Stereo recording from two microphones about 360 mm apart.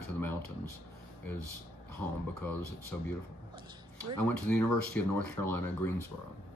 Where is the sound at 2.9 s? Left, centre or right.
Centre.